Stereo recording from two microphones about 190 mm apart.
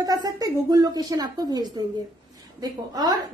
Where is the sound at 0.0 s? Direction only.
20° right (ahead or behind).